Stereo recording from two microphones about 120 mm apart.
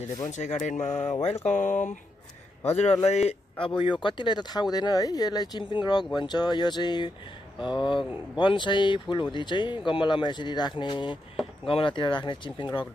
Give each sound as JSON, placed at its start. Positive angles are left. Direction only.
{"t": 0.2, "sound": "speech", "side_deg": 75}
{"t": 2.6, "sound": "a man's voice", "side_deg": 65}
{"t": 3.5, "sound": "speech", "side_deg": 45}